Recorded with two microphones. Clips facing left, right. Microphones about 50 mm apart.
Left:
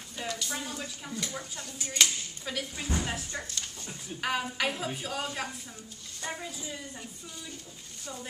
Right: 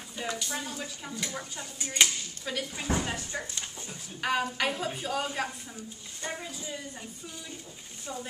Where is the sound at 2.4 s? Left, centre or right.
Centre.